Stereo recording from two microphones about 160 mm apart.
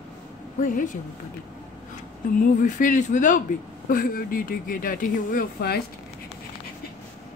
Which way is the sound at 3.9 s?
60° left (ahead or behind).